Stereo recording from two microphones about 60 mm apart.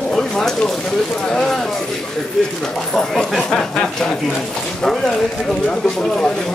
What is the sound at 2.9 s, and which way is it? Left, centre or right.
Speech, centre.